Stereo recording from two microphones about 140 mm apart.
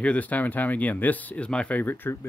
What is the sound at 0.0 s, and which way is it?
Speech, 10° left (ahead or behind).